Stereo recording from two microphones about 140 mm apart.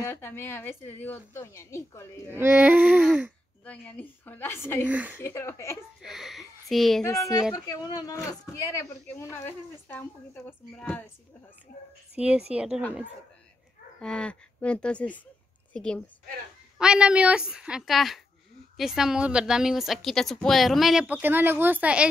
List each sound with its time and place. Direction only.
0.0 s speech: 15° left (ahead or behind)
2.3 s a sound: 15° right (ahead or behind)
3.6 s speech: 10° left (ahead or behind)
4.8 s a sound: 10° right (ahead or behind)
5.2 s speech: 15° left (ahead or behind)
6.0 s a woman's voice: centre (ahead or behind)
7.5 s speech: 25° left (ahead or behind)
11.7 s speech: 90° left
12.2 s a sound: 10° right (ahead or behind)
12.5 s a woman's voice: 5° right (ahead or behind)
14.0 s a woman's voice: 5° left (ahead or behind)
16.7 s a woman's voice: 5° right (ahead or behind)